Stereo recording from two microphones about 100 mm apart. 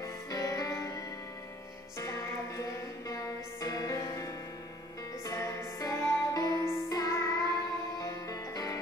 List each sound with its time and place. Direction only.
0.0 s music: 35° left (ahead or behind)